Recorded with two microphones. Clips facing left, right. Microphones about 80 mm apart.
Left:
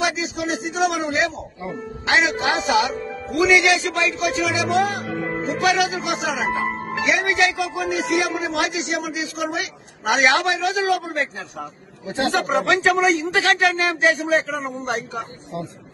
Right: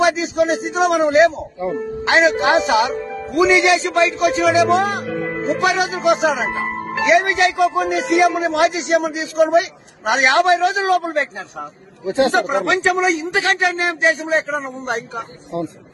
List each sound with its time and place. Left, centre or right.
0.0 s a man's voice: right
5.0 s speech: centre
5.4 s a man's voice: right
6.6 s music: centre
7.1 s a man's voice: right
12.6 s a man's voice: right